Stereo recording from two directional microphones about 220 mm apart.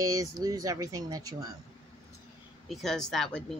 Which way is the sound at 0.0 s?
15° right (ahead or behind).